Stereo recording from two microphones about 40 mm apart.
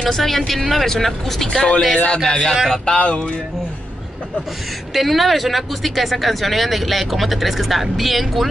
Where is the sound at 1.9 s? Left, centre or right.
Left.